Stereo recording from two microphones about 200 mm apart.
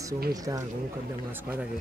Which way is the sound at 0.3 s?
15° right (ahead or behind).